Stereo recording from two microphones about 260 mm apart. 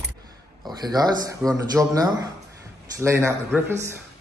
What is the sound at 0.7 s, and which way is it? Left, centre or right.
A woman's voice, centre.